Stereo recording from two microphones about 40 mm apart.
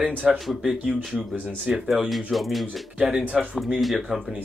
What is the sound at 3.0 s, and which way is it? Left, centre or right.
Speech, right.